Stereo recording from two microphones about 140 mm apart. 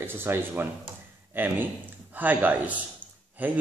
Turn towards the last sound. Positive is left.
turn(degrees=-10)  # may be behind; listen again after turning